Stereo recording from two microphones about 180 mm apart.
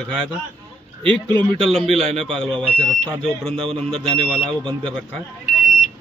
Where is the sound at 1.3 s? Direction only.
30° right (ahead or behind).